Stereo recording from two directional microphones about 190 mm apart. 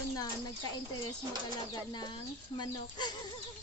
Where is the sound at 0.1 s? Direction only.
20° left (ahead or behind).